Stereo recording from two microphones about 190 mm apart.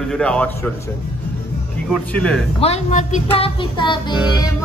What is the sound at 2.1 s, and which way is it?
Speech, 5° left (ahead or behind).